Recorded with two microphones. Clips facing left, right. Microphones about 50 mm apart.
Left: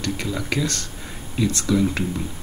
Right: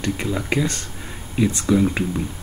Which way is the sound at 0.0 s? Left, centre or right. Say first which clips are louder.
Right 2 dB; right.